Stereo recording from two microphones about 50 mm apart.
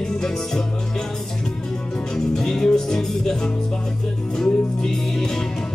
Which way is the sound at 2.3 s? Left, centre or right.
Centre.